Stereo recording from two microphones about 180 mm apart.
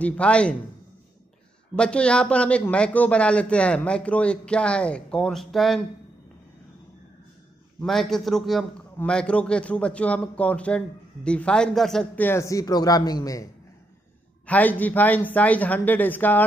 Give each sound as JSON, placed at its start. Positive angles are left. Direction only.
{"t": 0.0, "sound": "a man's voice", "side_deg": 5}
{"t": 1.8, "sound": "a man's voice", "side_deg": 5}
{"t": 7.8, "sound": "a man's voice", "side_deg": 0}
{"t": 14.4, "sound": "a man's voice", "side_deg": 10}